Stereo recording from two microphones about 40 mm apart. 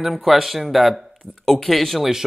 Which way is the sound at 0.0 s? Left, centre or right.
Centre.